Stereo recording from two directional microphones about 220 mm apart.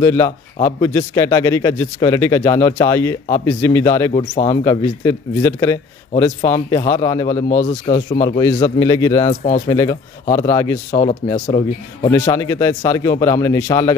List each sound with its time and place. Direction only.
0.0 s a man's voice: 15° left (ahead or behind)
4.1 s a man's voice: 25° left (ahead or behind)
7.4 s speech: 35° left (ahead or behind)
8.2 s a man's voice: 15° left (ahead or behind)
9.3 s speech: 35° left (ahead or behind)
9.7 s a man's voice: 15° left (ahead or behind)
11.4 s speech: 30° left (ahead or behind)
12.1 s a man's voice: 15° left (ahead or behind)